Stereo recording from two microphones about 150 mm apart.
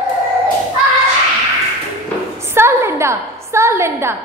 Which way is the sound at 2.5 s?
15° right (ahead or behind).